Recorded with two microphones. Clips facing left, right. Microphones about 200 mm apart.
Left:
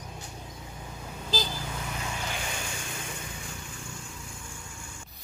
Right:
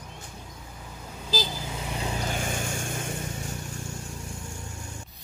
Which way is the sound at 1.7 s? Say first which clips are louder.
Right 4 dB; 25° right (ahead or behind).